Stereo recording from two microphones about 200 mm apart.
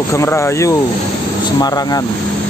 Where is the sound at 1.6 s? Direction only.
20° left (ahead or behind).